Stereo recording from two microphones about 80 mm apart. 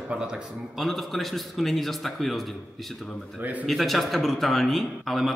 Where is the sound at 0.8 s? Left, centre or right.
Centre.